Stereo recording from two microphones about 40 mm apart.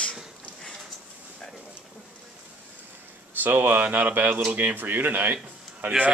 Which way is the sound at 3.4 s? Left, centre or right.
Right.